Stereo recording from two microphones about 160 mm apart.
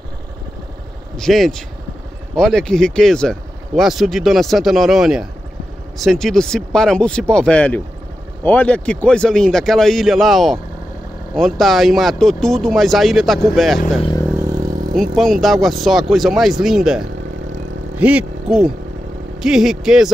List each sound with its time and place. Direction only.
1.1 s speech: centre (ahead or behind)
14.3 s vehicle: 25° right (ahead or behind)
15.0 s speech: centre (ahead or behind)